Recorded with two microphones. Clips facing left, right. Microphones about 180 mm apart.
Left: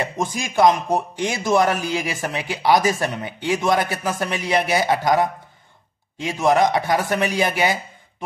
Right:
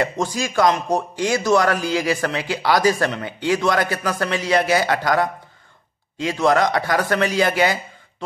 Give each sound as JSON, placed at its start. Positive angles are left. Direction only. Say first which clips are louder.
{"t": 0.0, "sound": "a man's voice", "louder": "right 3 dB", "side_deg": 15}